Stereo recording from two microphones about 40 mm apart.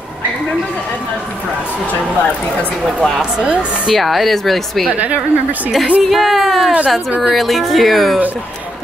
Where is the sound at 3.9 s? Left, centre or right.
Centre.